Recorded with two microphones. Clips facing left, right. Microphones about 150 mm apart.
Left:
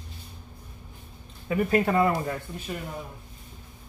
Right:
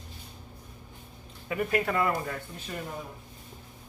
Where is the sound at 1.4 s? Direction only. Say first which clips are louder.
Left 5 dB; 30° left (ahead or behind).